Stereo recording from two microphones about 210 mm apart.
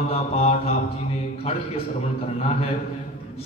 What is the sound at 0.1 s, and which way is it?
Speech, 30° left (ahead or behind).